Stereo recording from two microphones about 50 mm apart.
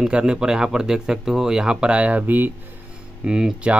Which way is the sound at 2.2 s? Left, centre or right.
Right.